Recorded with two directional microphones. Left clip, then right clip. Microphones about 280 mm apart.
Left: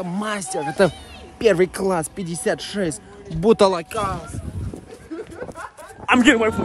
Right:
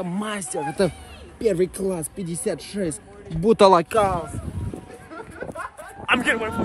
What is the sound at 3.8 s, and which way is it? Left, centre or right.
Speech, centre.